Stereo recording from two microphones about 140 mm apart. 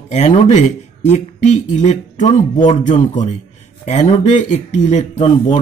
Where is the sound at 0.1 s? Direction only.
50° left (ahead or behind).